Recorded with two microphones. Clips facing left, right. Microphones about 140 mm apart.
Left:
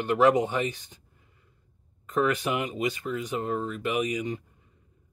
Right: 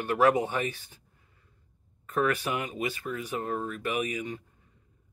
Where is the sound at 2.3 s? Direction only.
20° left (ahead or behind).